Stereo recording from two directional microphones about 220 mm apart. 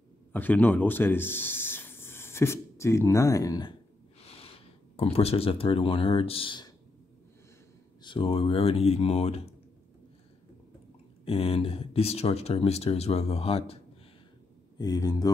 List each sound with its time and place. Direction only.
0.3 s a man's voice: 10° left (ahead or behind)
4.2 s speech: 25° left (ahead or behind)
8.0 s speech: 25° left (ahead or behind)
11.2 s speech: 25° left (ahead or behind)
14.8 s speech: 15° left (ahead or behind)